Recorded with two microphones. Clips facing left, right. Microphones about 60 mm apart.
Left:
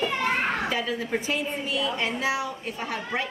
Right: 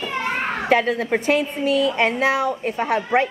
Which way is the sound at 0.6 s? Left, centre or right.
Right.